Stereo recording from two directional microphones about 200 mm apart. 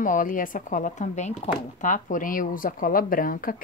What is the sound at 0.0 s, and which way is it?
Speech, 40° left (ahead or behind).